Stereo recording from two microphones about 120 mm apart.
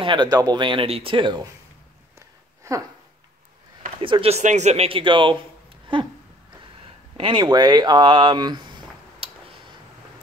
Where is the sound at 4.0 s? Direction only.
50° right (ahead or behind).